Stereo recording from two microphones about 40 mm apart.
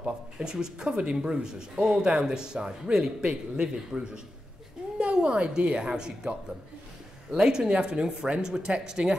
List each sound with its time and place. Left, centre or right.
0.4 s a woman's voice: centre